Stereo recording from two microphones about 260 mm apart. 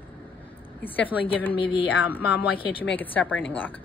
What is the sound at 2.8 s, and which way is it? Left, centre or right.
Speech, centre.